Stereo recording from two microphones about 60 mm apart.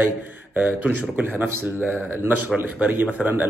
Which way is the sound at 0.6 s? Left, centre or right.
Right.